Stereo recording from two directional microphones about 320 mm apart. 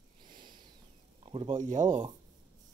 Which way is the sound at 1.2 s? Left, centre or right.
Centre.